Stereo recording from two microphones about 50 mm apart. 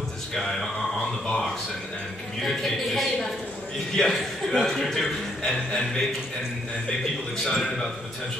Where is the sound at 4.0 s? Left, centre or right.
Centre.